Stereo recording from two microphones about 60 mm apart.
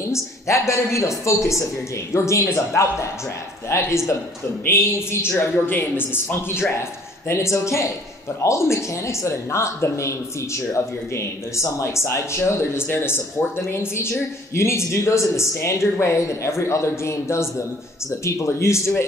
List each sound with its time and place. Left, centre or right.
0.1 s a man's voice: left